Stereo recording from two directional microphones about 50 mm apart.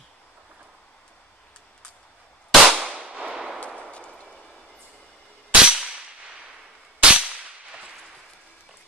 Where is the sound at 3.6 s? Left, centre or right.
Left.